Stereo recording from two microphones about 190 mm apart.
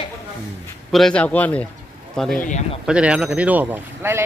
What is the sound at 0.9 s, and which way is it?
Speech, 5° left (ahead or behind).